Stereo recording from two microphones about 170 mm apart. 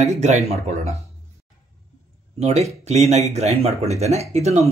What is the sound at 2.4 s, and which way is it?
Speech, 40° right (ahead or behind).